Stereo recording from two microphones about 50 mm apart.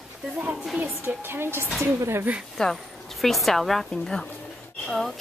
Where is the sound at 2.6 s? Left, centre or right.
Centre.